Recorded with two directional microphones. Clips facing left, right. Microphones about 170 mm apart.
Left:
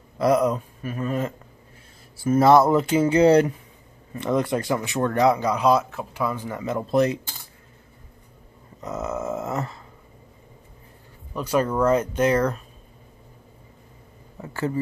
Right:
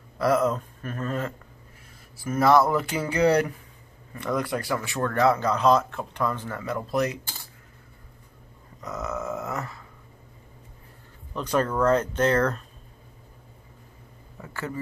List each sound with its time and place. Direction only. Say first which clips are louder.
0.2 s speech: left 3 dB; 15° left (ahead or behind)
2.2 s speech: left 4 dB; 25° left (ahead or behind)
8.8 s speech: left 3 dB; 25° left (ahead or behind)
11.3 s speech: left 2 dB; 10° left (ahead or behind)
14.4 s a sound: left 7 dB; 30° left (ahead or behind)